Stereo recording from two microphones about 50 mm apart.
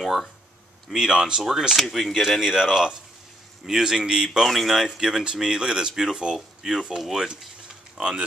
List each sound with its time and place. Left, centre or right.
0.0 s speech: centre
8.0 s speech: centre